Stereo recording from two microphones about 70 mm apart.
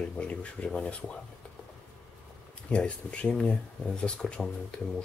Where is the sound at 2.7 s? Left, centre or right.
Centre.